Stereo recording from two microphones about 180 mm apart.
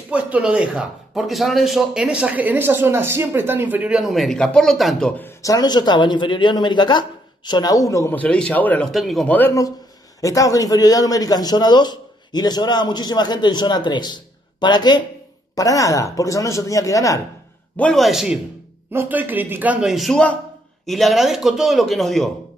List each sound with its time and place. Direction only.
0.1 s speech: 5° right (ahead or behind)
5.4 s a man's voice: 20° left (ahead or behind)
17.7 s a man's voice: 5° left (ahead or behind)